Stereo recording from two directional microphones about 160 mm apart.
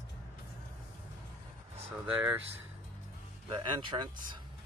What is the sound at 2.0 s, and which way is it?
Speech, 5° right (ahead or behind).